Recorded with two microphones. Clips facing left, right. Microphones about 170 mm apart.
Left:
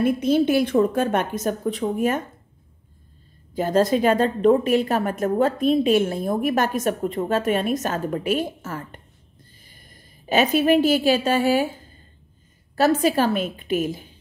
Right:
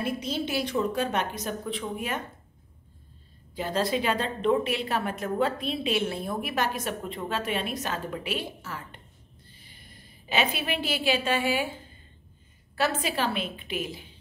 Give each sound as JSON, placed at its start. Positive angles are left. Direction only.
{"t": 0.0, "sound": "a woman's voice", "side_deg": 55}
{"t": 3.5, "sound": "a woman's voice", "side_deg": 45}
{"t": 12.7, "sound": "a woman's voice", "side_deg": 40}